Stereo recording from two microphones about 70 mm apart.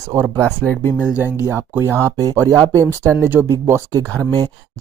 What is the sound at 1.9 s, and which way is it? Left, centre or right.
Speech, right.